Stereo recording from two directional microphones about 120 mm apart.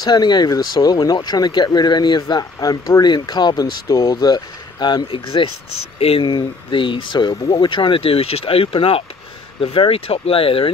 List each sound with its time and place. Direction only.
0.0 s speech: 35° left (ahead or behind)